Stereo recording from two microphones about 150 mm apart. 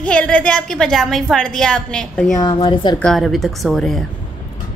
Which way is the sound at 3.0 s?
Centre (ahead or behind).